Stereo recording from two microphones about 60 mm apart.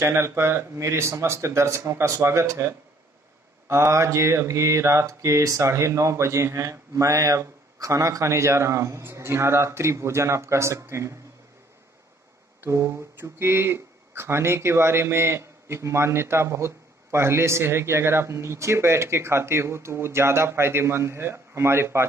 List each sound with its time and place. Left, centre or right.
0.0 s speech: right
3.6 s mantra: right
12.6 s speech: right